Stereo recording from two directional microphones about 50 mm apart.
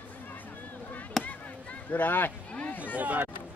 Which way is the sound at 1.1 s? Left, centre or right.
Centre.